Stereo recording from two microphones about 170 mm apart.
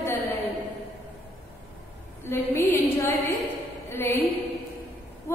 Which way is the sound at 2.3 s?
15° left (ahead or behind).